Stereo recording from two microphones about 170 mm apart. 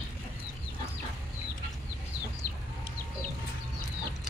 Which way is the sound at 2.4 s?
65° left (ahead or behind).